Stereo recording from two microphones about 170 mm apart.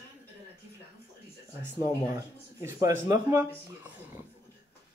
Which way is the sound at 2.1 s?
20° right (ahead or behind).